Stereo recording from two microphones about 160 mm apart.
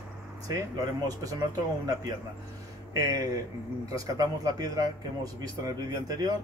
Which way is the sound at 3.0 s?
20° right (ahead or behind).